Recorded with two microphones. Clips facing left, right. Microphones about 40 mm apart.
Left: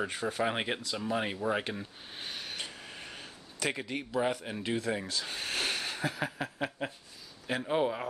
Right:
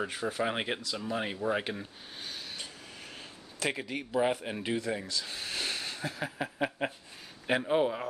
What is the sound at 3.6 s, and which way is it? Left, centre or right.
Speech, centre.